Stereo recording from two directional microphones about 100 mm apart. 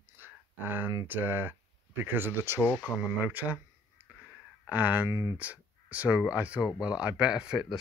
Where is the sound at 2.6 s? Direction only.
20° left (ahead or behind).